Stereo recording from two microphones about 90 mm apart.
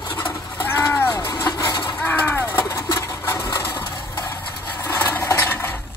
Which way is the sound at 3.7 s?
50° left (ahead or behind).